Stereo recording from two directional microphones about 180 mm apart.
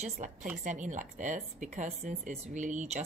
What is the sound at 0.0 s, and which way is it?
Speech, 45° right (ahead or behind).